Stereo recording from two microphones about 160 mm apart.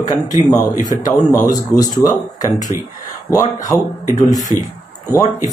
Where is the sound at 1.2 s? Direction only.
25° left (ahead or behind).